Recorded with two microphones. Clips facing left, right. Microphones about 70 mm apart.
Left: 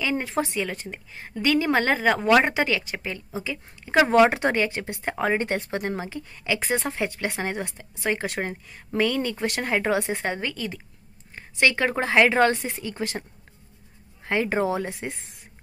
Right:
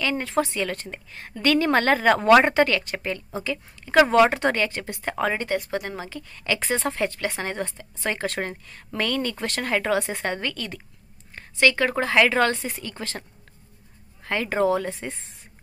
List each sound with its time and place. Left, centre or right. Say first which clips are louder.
0.0 s speech: right 2 dB; centre
0.6 s speech: right 1 dB; centre
14.2 s speech: right 1 dB; left